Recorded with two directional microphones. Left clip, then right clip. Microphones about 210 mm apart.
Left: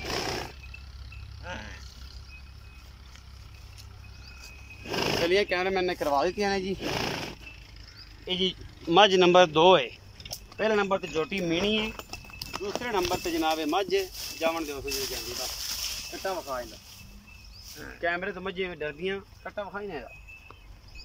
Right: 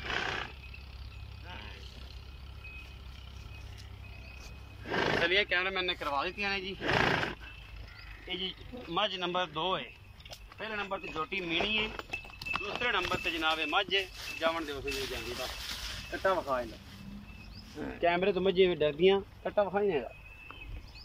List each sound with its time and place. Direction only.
0.0 s roar: 20° left (ahead or behind)
4.8 s vehicle: 5° left (ahead or behind)
5.2 s speech: 25° left (ahead or behind)
6.8 s speech: 10° left (ahead or behind)
8.3 s speech: 50° left (ahead or behind); by 14.0 s 20° left (ahead or behind)
14.1 s speech: 10° left (ahead or behind)
15.8 s a sound: 10° left (ahead or behind)
18.0 s speech: 10° right (ahead or behind)